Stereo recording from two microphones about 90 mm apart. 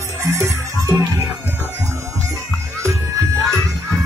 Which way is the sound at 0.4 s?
35° right (ahead or behind).